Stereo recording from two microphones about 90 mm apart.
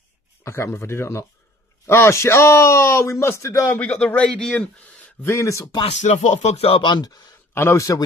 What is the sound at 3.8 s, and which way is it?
Speech, 15° left (ahead or behind).